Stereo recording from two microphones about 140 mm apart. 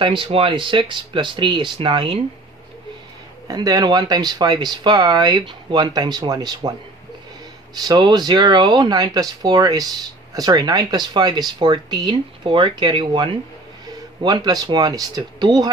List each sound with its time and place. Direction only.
0.0 s speech: 40° right (ahead or behind)
3.4 s speech: 25° right (ahead or behind)
7.7 s speech: 30° right (ahead or behind)